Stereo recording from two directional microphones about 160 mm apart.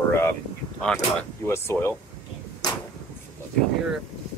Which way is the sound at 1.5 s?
15° left (ahead or behind).